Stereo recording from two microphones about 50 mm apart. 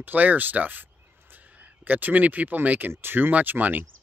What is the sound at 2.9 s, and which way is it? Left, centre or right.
Speech, right.